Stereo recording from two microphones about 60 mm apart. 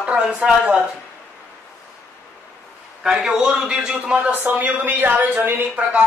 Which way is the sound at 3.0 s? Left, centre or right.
Centre.